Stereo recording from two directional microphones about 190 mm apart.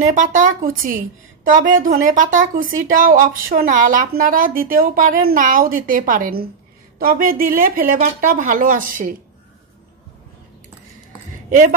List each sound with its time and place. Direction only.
0.1 s speech: 40° right (ahead or behind)